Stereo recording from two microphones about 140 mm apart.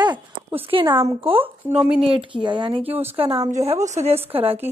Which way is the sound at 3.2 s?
40° right (ahead or behind).